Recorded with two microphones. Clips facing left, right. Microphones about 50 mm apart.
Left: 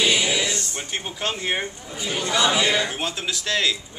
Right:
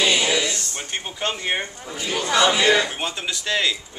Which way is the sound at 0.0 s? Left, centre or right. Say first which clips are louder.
Right 1 dB; right.